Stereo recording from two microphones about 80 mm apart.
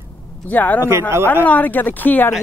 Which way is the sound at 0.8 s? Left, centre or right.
Right.